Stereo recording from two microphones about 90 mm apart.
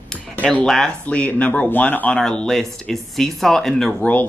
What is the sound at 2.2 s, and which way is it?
Speech, 5° left (ahead or behind).